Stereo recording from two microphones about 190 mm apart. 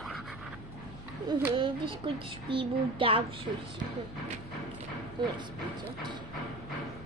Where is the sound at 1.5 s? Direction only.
25° right (ahead or behind).